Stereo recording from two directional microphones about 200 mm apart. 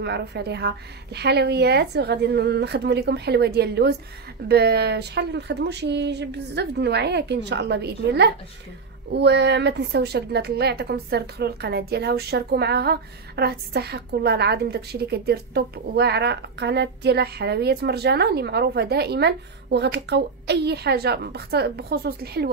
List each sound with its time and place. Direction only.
0.0 s a woman's voice: 55° right (ahead or behind)